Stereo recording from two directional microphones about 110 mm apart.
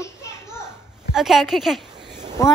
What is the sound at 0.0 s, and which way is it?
Children playing, 25° left (ahead or behind).